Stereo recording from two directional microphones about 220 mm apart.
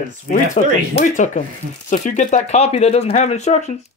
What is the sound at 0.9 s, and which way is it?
Speech, 35° left (ahead or behind).